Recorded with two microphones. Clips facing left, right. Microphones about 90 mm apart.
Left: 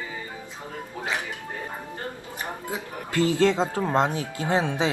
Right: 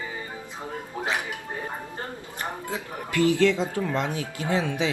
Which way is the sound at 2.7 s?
25° left (ahead or behind).